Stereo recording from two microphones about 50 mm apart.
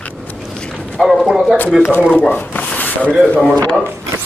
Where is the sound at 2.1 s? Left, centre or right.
Left.